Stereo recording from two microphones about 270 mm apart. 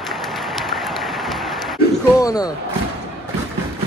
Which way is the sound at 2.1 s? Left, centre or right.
Centre.